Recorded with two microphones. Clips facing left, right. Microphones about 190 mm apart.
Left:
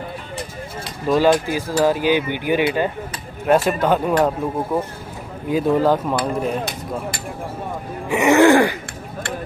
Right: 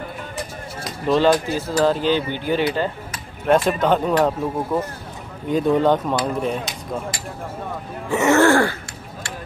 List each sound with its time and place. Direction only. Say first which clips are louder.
1.0 s speech: left 1 dB; 5° left (ahead or behind)
8.1 s speech: left 2 dB; 15° left (ahead or behind)